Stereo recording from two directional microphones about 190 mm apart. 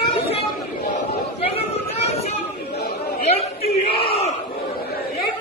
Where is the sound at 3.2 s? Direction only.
35° left (ahead or behind).